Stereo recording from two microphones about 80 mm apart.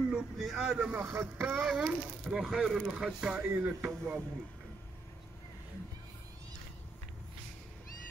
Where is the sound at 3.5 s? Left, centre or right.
Right.